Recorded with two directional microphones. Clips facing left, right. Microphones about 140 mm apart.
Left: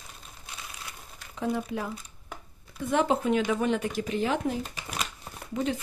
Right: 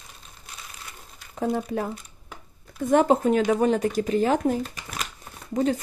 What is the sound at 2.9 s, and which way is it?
Speech, 45° right (ahead or behind).